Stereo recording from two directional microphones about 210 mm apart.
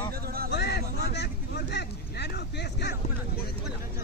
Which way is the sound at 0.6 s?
50° left (ahead or behind).